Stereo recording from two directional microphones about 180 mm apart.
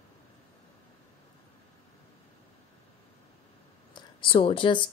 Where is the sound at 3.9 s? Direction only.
30° left (ahead or behind).